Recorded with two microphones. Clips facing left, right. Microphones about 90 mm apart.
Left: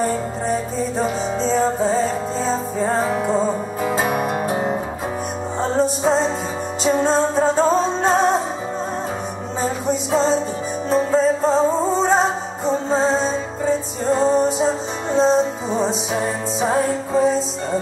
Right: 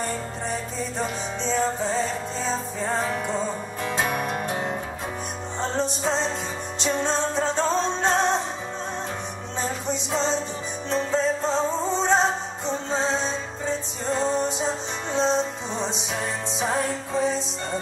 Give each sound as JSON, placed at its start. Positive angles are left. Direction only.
{"t": 0.0, "sound": "music", "side_deg": 5}
{"t": 9.6, "sound": "music", "side_deg": 5}
{"t": 11.7, "sound": "music", "side_deg": 40}
{"t": 12.0, "sound": "music", "side_deg": 5}